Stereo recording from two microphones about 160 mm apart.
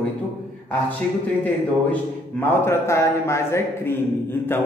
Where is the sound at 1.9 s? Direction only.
15° left (ahead or behind).